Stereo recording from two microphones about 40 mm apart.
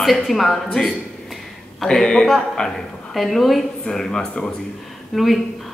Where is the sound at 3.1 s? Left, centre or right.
Centre.